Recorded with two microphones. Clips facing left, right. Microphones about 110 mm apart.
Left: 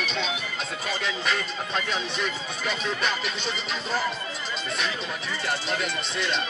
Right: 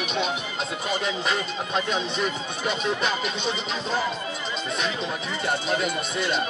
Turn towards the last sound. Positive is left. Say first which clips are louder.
# right 3 dB
turn(degrees=-10)  # may be behind; listen again after turning